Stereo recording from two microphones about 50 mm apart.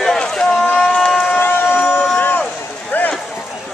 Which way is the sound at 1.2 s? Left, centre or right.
Left.